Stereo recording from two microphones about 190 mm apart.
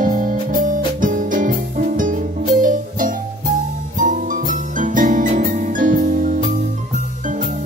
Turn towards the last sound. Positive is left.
turn(degrees=-45)  # may be behind; listen again after turning